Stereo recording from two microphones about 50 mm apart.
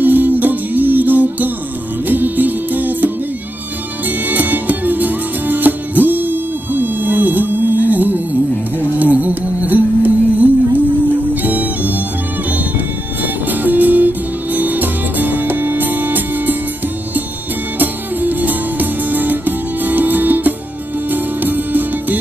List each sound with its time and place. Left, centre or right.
0.0 s music: right
4.3 s music: right
17.7 s music: right